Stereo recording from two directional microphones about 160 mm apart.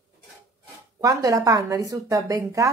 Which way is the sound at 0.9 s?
20° right (ahead or behind).